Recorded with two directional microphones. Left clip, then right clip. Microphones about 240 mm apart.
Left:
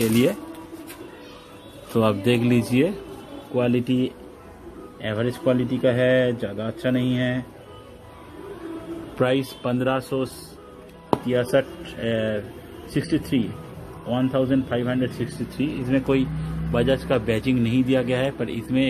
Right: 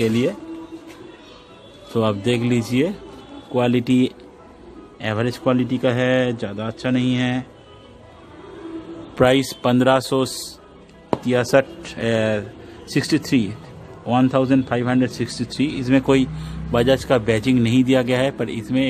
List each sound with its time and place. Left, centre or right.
2.0 s speech: centre
3.5 s a man's voice: right
9.1 s a man's voice: right